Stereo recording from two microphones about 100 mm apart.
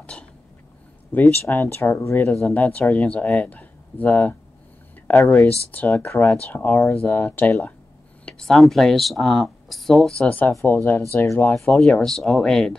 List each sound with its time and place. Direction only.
0.0 s a sound: 10° left (ahead or behind)
1.1 s speech: 20° left (ahead or behind)
8.3 s speech: 5° left (ahead or behind)
11.5 s speech: 5° left (ahead or behind)